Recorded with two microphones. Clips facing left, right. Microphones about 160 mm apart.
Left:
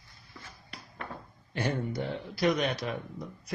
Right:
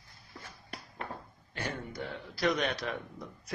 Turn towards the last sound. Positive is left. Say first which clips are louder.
# left 2 dB
turn(degrees=5)  # may be behind; listen again after turning